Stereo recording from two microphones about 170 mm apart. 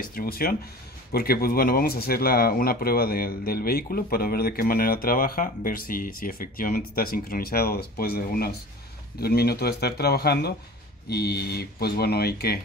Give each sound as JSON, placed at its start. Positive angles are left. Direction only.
{"t": 0.0, "sound": "speech", "side_deg": 60}